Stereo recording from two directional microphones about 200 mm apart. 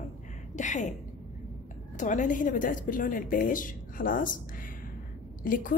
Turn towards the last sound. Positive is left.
turn(degrees=45)  # may be behind; listen again after turning